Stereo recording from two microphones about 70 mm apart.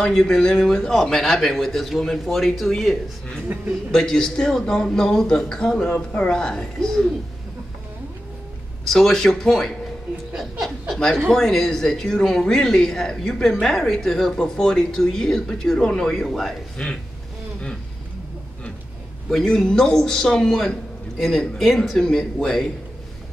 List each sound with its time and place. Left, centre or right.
0.0 s speech: centre
8.8 s speech: centre
16.8 s speech: centre
19.3 s speech: centre